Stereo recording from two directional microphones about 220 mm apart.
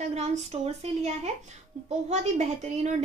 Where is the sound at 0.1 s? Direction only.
30° right (ahead or behind).